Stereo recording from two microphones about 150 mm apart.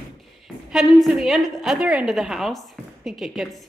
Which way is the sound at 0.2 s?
Centre (ahead or behind).